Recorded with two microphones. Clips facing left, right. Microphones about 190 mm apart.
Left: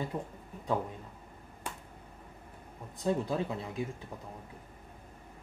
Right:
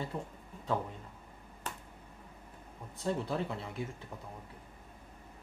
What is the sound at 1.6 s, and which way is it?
Finger snapping, 10° left (ahead or behind).